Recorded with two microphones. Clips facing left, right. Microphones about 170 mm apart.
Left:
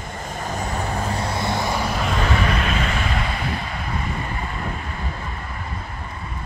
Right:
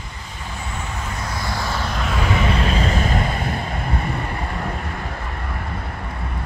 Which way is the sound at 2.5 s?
30° right (ahead or behind).